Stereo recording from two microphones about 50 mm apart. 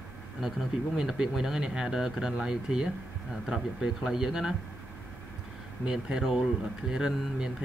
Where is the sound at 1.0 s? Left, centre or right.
Centre.